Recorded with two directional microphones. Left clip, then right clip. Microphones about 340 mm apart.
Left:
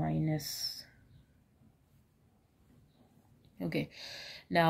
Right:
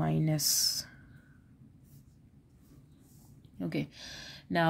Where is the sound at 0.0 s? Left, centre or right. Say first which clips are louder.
Right 3 dB; right.